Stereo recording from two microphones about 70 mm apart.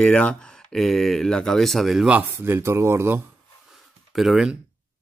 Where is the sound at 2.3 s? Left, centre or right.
Right.